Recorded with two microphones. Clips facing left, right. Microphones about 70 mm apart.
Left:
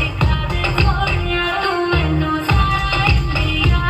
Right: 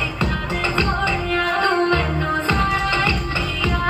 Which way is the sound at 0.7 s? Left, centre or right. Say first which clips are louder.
Left 1 dB; right.